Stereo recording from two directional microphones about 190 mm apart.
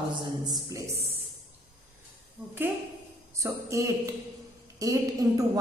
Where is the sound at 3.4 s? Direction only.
15° right (ahead or behind).